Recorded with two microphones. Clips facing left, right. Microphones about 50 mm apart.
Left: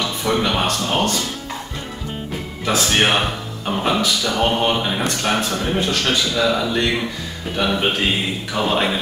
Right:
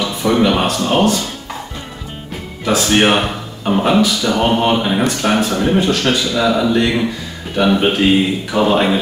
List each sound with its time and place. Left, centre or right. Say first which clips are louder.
0.0 s speech: right 5 dB; centre
2.6 s a man's voice: right 4 dB; centre